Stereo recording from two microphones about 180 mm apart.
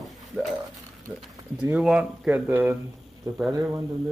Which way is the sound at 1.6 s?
5° right (ahead or behind).